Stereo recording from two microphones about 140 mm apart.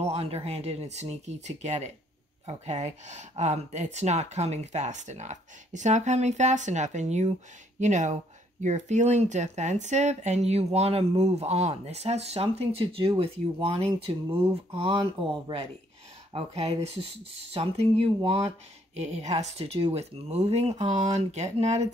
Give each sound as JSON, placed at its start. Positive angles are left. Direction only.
{"t": 0.1, "sound": "speech", "side_deg": -45}
{"t": 18.9, "sound": "speech", "side_deg": -55}